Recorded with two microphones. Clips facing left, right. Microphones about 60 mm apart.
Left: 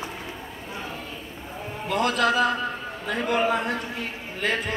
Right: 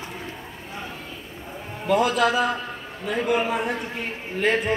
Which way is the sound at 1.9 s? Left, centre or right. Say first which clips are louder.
Right 3 dB; centre.